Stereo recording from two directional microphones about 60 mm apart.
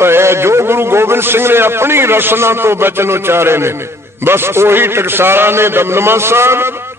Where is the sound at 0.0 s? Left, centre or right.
Right.